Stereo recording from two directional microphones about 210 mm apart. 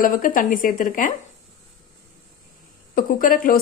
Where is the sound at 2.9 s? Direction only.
40° left (ahead or behind).